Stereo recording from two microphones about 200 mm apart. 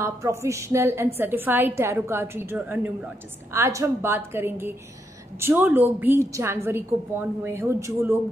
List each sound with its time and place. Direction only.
0.0 s a woman's voice: 15° right (ahead or behind)